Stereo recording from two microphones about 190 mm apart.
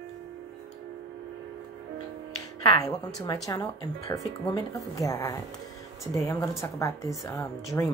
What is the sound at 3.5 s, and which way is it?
Speech, 20° left (ahead or behind).